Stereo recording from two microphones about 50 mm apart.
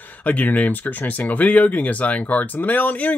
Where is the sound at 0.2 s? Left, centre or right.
Left.